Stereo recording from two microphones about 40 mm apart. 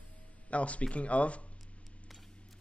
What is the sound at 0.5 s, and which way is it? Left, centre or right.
Speech, left.